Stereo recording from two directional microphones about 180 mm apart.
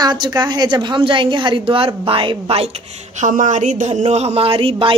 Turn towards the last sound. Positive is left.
turn(degrees=-30)  # may be behind; listen again after turning